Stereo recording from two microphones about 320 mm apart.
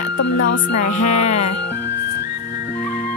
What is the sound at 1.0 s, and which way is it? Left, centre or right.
Music, left.